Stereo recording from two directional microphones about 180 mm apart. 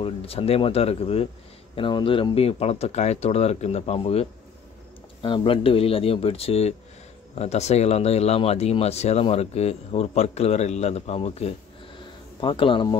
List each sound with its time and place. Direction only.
0.0 s speech: 30° left (ahead or behind)